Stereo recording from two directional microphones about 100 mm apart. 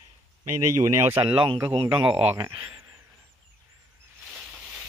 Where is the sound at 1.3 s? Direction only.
55° right (ahead or behind).